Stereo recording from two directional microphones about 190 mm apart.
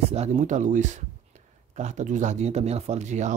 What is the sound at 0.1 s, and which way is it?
Speech, 35° right (ahead or behind).